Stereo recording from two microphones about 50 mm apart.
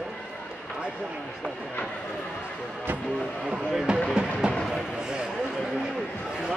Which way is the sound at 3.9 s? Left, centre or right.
Right.